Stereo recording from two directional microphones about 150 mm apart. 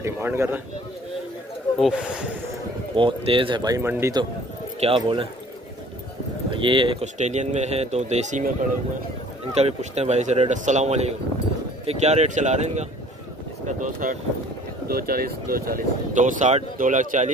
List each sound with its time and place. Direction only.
0.0 s speech: 15° right (ahead or behind)
1.8 s speech: 5° right (ahead or behind)
3.0 s speech: 35° right (ahead or behind); by 4.2 s 20° right (ahead or behind)
4.7 s speech: 40° right (ahead or behind)
6.5 s speech: 35° right (ahead or behind)
7.2 s speech: 50° right (ahead or behind)
9.6 s speech: 45° right (ahead or behind)
14.9 s speech: 85° right; by 17.3 s 60° right (ahead or behind)